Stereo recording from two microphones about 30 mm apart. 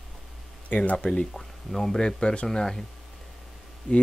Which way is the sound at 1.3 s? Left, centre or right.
Centre.